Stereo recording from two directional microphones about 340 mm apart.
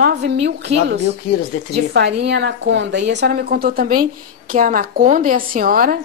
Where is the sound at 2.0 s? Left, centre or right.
Right.